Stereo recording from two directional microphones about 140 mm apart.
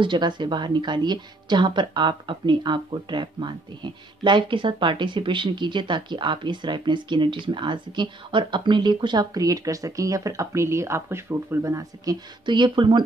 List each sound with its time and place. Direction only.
0.0 s speech: 35° right (ahead or behind)